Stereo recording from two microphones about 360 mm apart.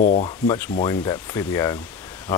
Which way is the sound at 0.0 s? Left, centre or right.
Centre.